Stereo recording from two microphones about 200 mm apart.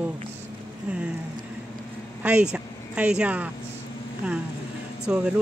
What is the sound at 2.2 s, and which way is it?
Vehicle, 5° right (ahead or behind).